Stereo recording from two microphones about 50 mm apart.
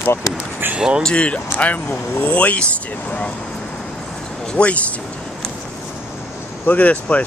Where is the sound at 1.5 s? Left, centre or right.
Left.